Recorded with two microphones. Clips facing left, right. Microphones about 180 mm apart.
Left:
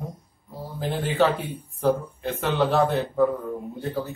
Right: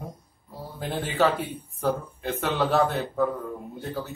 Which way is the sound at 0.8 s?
Centre (ahead or behind).